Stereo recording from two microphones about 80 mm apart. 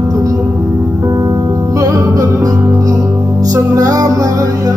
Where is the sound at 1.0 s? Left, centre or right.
Right.